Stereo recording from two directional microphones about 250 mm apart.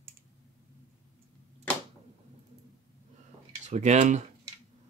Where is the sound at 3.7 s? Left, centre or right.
Right.